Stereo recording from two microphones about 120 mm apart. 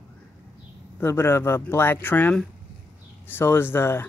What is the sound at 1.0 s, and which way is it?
Speech, 20° left (ahead or behind).